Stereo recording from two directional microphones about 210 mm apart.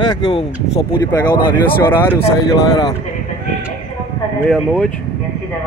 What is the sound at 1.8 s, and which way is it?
Speech, 10° left (ahead or behind).